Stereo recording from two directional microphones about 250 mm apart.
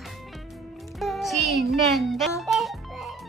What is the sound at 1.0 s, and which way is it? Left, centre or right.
Music, centre.